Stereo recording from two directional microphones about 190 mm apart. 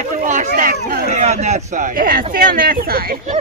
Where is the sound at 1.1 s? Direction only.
35° right (ahead or behind).